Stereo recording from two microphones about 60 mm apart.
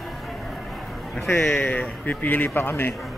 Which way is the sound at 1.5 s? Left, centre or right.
Left.